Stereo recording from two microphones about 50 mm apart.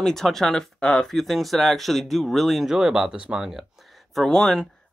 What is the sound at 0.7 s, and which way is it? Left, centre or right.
Speech, centre.